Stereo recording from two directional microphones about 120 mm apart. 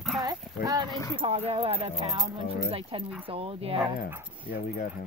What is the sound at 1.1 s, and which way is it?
Speech, 55° right (ahead or behind).